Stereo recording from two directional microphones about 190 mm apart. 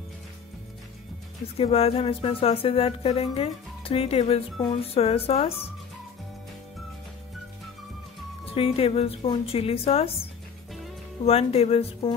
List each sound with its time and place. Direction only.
1.4 s speech: 30° left (ahead or behind)
8.5 s speech: 30° left (ahead or behind)
11.2 s speech: 30° left (ahead or behind)